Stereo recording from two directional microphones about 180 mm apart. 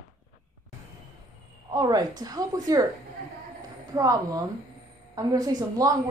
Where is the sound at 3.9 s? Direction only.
20° right (ahead or behind).